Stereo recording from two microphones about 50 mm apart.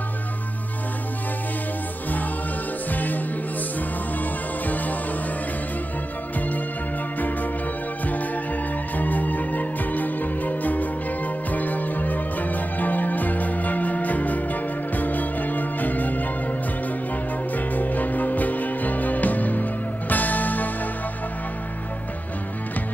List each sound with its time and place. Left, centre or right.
2.9 s music: left
4.2 s music: left
8.9 s music: left
17.6 s music: left